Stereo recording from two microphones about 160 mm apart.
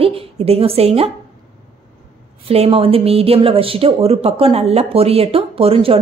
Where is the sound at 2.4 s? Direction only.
40° right (ahead or behind).